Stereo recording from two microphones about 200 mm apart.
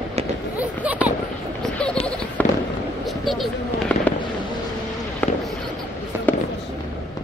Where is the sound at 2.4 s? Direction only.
10° left (ahead or behind).